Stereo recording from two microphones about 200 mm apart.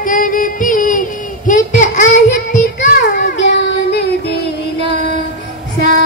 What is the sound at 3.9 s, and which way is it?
Music, 55° left (ahead or behind).